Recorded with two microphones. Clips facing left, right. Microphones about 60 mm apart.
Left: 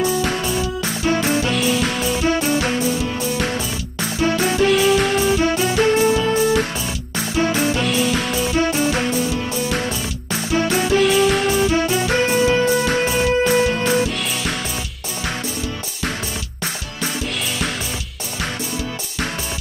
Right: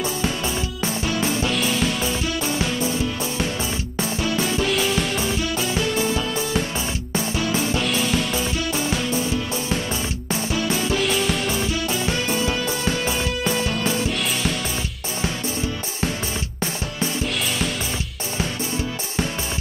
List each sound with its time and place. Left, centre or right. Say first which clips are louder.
1.0 s music: left 6 dB; left
1.5 s music: left 3 dB; centre
2.2 s music: left 6 dB; left
4.2 s music: left 6 dB; left
4.6 s music: left 7 dB; centre
5.2 s music: left 7 dB; left
7.8 s music: left 3 dB; centre
8.5 s music: left 6 dB; left
10.5 s music: left 6 dB; left
11.0 s music: left 7 dB; centre
11.7 s music: left 6 dB; left